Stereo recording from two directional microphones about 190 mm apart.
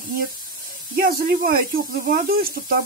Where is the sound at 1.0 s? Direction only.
50° right (ahead or behind).